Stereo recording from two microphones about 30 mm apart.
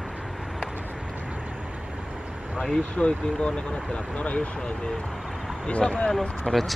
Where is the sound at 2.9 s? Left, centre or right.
Left.